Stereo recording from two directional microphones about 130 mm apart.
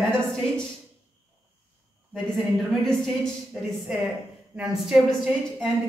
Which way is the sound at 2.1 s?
Centre (ahead or behind).